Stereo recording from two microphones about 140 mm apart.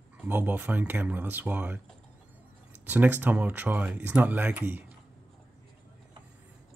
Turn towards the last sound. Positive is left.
turn(degrees=-15)  # may be behind; listen again after turning